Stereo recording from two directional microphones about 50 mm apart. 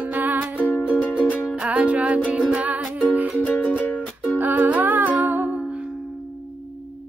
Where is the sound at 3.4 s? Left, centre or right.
Left.